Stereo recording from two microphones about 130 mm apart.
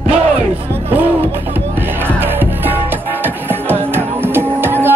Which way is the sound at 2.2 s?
15° right (ahead or behind).